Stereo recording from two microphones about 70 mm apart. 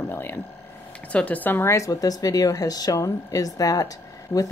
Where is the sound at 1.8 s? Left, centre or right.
Left.